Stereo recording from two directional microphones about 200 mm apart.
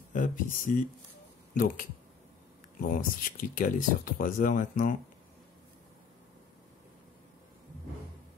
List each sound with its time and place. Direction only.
0.1 s speech: 40° left (ahead or behind)
2.9 s speech: 45° left (ahead or behind)